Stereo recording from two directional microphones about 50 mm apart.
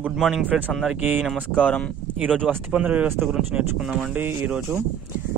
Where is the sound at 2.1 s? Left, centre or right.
Right.